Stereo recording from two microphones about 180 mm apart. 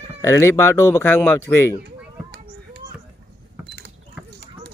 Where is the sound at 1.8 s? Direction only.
65° right (ahead or behind).